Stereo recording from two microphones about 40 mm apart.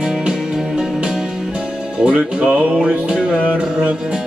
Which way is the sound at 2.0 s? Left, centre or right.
Right.